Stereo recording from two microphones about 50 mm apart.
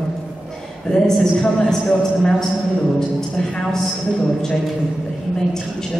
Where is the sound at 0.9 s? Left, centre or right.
Centre.